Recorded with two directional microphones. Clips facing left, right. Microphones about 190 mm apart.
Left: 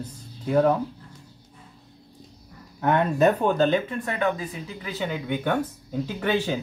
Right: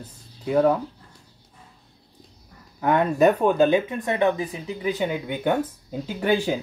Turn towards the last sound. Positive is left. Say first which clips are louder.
# right 2 dB
turn(degrees=-10)  # may be behind; listen again after turning